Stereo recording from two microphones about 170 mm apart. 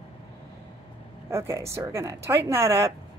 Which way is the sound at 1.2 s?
15° right (ahead or behind).